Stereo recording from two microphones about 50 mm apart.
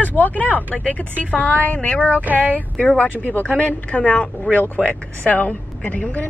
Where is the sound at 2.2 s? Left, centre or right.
Right.